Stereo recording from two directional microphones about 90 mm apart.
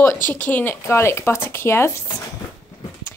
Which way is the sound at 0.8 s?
30° left (ahead or behind).